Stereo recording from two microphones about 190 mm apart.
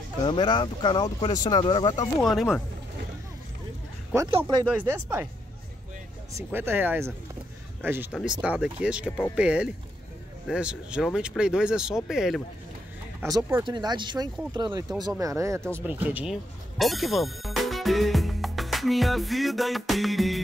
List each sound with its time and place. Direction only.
0.2 s speech: 25° left (ahead or behind)
2.2 s speech: centre (ahead or behind)
4.3 s speech: 25° right (ahead or behind)
4.8 s speech: 10° right (ahead or behind)
6.5 s speech: 10° right (ahead or behind)
13.7 s speech: 25° right (ahead or behind); by 20.4 s centre (ahead or behind)